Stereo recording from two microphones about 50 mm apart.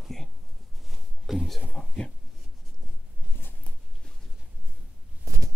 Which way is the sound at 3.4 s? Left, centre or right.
Left.